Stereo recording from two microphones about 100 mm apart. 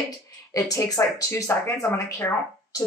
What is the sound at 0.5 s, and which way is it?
Speech, 35° left (ahead or behind).